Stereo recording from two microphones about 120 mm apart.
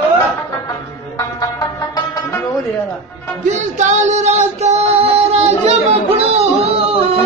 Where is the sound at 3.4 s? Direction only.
85° right; by 7.2 s 55° right (ahead or behind).